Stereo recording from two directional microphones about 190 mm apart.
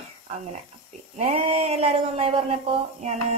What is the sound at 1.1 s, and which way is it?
Speech, 35° right (ahead or behind).